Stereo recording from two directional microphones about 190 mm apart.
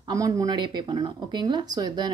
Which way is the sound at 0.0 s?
20° right (ahead or behind).